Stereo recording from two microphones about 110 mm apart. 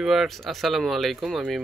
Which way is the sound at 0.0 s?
Centre (ahead or behind).